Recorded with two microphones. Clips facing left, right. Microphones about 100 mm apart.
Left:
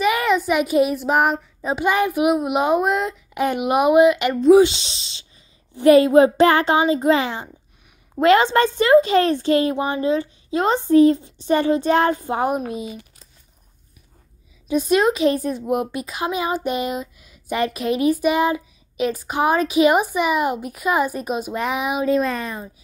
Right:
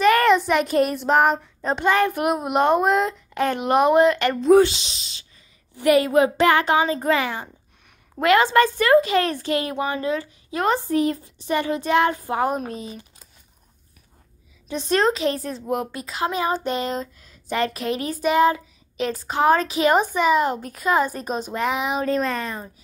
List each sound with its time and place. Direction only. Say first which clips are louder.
0.0 s child singing: right 3 dB; 5° left (ahead or behind)
3.3 s a woman's voice: even; 10° left (ahead or behind)
4.6 s a woman's voice: left 3 dB; 30° left (ahead or behind)
14.7 s a woman's voice: left 3 dB; 10° left (ahead or behind)